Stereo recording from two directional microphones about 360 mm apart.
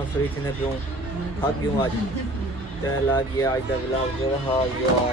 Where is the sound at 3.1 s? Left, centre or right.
Centre.